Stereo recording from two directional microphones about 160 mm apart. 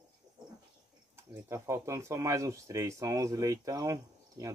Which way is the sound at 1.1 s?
15° right (ahead or behind).